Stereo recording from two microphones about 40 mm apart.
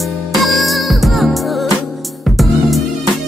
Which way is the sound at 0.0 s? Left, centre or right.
Centre.